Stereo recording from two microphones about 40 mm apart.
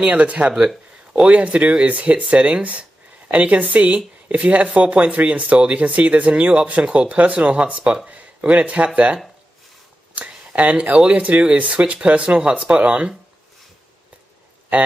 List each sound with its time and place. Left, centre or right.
0.0 s speech: right